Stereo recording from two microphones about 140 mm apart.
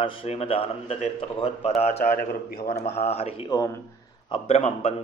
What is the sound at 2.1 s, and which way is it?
Speech, 90° left.